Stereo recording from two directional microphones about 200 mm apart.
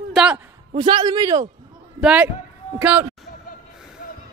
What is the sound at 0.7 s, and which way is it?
Speech, 20° right (ahead or behind).